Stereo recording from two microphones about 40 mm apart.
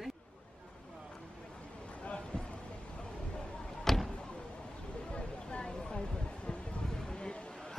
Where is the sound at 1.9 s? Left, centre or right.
Left.